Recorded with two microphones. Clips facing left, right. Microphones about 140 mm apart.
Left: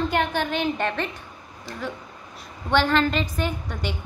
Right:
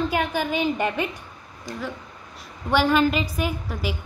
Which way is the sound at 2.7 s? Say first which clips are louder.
Right 1 dB; 10° right (ahead or behind).